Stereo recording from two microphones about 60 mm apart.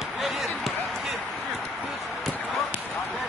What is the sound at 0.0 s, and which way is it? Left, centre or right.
Basketball bounce, centre.